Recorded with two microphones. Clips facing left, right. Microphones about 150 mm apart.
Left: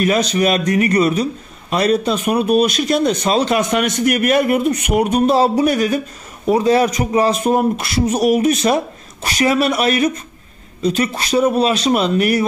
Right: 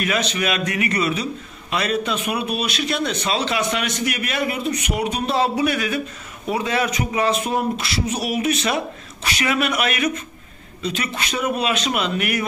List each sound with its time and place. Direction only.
0.0 s speech: 40° left (ahead or behind)